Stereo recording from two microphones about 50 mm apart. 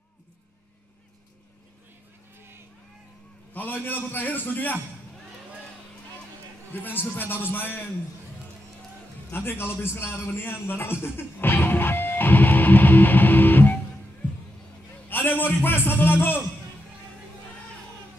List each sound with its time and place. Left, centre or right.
3.5 s a man's voice: left
6.7 s a man's voice: left
9.3 s a man's voice: left
11.1 s music: left
15.0 s a man's voice: left